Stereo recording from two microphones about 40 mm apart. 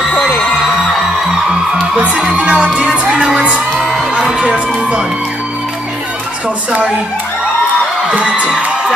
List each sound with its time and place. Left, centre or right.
2.0 s music: right
2.7 s music: centre
3.3 s music: right
4.1 s a sound: right
8.1 s speech: right